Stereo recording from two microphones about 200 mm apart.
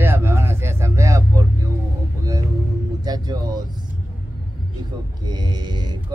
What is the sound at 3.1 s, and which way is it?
Speech, 20° right (ahead or behind).